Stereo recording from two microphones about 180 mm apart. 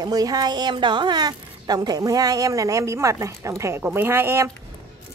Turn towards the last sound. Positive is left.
turn(degrees=-15)  # may be behind; listen again after turning